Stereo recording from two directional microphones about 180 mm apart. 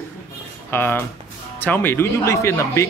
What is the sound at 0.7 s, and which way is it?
Speech, 10° left (ahead or behind).